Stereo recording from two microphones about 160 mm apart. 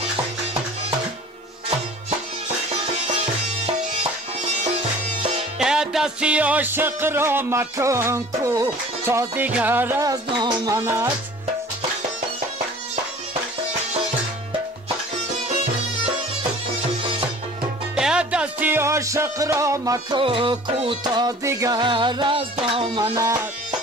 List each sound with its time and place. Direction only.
5.6 s music: 5° right (ahead or behind); by 11.1 s 20° right (ahead or behind)
17.9 s music: 5° right (ahead or behind); by 20.2 s 20° right (ahead or behind)
20.2 s music: 30° right (ahead or behind)
23.1 s music: 20° right (ahead or behind)